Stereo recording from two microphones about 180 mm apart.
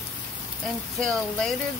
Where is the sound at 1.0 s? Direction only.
5° left (ahead or behind).